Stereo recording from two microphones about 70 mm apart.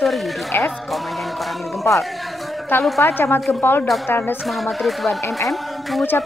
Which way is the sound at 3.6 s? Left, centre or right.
Left.